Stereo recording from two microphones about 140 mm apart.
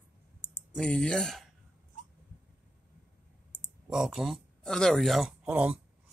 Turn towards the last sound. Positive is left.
turn(degrees=-5)  # may be behind; listen again after turning